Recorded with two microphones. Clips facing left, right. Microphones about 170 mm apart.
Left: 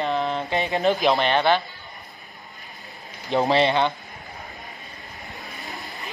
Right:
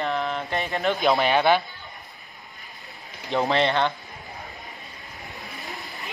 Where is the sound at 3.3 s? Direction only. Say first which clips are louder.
Left 2 dB; 15° left (ahead or behind).